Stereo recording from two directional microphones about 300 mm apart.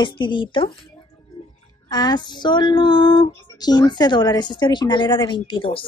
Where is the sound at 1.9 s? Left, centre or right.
Centre.